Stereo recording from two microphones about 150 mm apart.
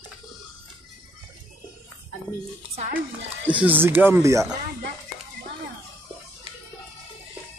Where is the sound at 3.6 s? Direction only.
15° right (ahead or behind).